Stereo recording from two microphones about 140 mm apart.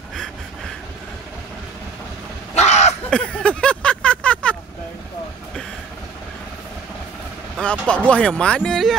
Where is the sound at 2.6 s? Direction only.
55° left (ahead or behind).